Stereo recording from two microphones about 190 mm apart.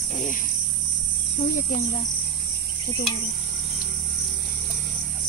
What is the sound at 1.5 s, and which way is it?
Speech, 45° left (ahead or behind).